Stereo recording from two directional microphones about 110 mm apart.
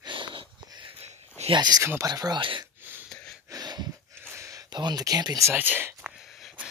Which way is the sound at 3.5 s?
40° right (ahead or behind).